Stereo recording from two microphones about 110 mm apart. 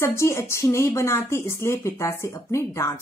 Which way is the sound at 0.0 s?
25° left (ahead or behind).